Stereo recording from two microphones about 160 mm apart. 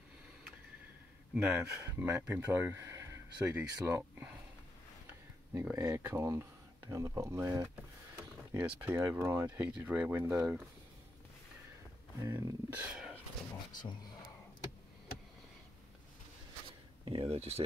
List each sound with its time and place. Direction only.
1.3 s speech: 10° right (ahead or behind)
5.5 s speech: 15° right (ahead or behind)
12.2 s speech: 15° right (ahead or behind)
13.7 s speech: 25° left (ahead or behind)
17.0 s speech: 35° right (ahead or behind)